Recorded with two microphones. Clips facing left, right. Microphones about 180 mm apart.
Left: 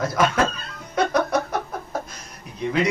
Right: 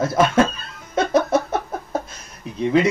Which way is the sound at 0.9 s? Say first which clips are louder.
Right 3 dB; 25° right (ahead or behind).